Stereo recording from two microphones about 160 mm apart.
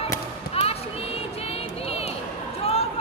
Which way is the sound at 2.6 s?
40° left (ahead or behind).